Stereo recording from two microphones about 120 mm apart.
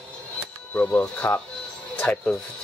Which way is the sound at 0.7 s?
15° left (ahead or behind).